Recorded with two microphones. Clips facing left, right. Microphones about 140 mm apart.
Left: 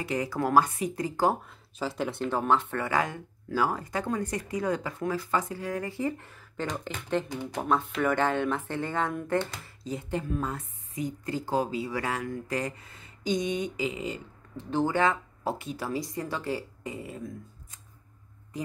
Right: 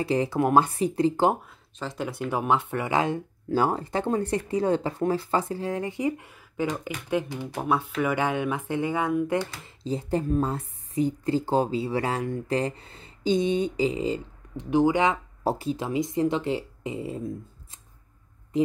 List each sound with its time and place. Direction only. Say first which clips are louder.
0.0 s speech: right 5 dB; 30° right (ahead or behind)
1.8 s speech: left 1 dB; centre (ahead or behind)
2.2 s speech: right 1 dB; 15° right (ahead or behind)
9.8 s speech: right 6 dB; 35° right (ahead or behind)
14.6 s speech: right 4 dB; 15° right (ahead or behind)
15.4 s speech: right 6 dB; 35° right (ahead or behind)
15.7 s speech: right 6 dB; 20° right (ahead or behind)